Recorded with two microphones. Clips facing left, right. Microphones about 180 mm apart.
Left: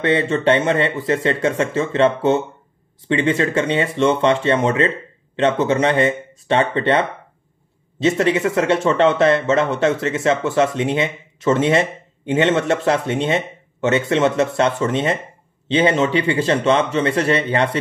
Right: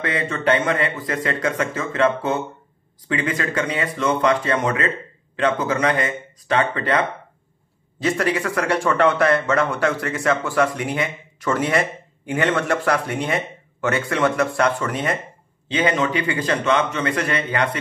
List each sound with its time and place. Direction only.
0.0 s speech: 25° left (ahead or behind)